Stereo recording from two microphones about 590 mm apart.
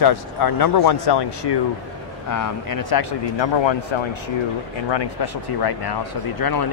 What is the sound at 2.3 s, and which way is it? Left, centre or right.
Speech, left.